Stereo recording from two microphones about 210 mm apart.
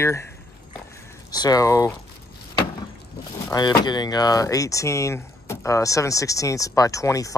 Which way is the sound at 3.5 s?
20° left (ahead or behind).